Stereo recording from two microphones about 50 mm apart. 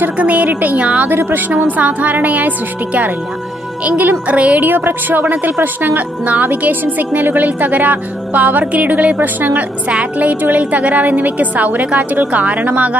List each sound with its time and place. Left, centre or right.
0.2 s a woman's voice: right
4.6 s a woman's voice: right